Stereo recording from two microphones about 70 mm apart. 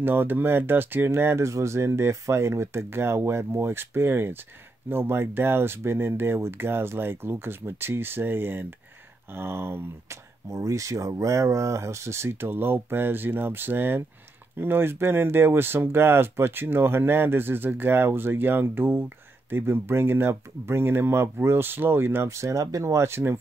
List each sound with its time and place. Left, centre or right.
0.0 s speech: right